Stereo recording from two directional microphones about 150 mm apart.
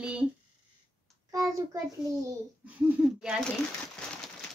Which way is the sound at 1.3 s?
20° right (ahead or behind).